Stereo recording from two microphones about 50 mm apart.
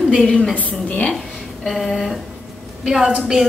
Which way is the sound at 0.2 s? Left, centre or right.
Centre.